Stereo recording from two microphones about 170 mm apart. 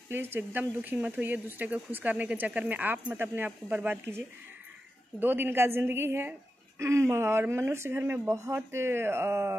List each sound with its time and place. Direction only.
0.1 s speech: 15° right (ahead or behind)
5.2 s speech: 10° right (ahead or behind)